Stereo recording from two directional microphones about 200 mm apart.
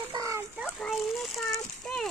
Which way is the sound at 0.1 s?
15° right (ahead or behind).